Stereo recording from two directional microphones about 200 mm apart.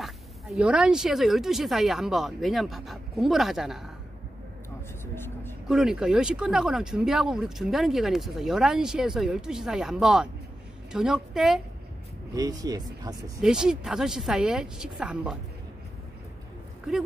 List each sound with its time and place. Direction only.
0.0 s speech: 5° right (ahead or behind)
5.0 s vehicle: 10° left (ahead or behind)
5.7 s speech: centre (ahead or behind)
12.4 s speech: 20° right (ahead or behind)
13.4 s speech: 5° right (ahead or behind)